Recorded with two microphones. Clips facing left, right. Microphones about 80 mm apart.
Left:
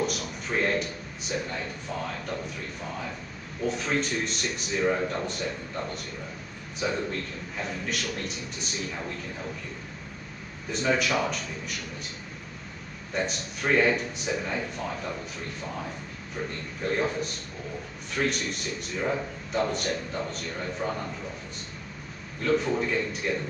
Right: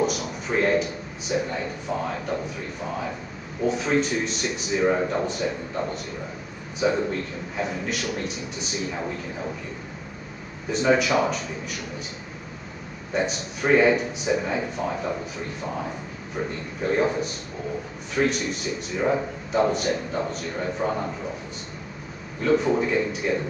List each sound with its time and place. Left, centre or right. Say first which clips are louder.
0.0 s speech: right 5 dB; centre
3.6 s a man's voice: right 5 dB; centre
10.7 s speech: right 5 dB; centre
13.1 s a man's voice: right 5 dB; centre
16.8 s a man's voice: right 5 dB; centre
22.4 s a man's voice: right 4 dB; centre